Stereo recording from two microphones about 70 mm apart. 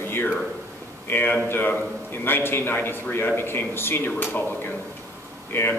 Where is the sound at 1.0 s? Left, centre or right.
Left.